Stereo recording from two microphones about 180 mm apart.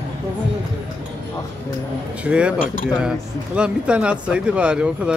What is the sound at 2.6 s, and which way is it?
Speech, 50° left (ahead or behind).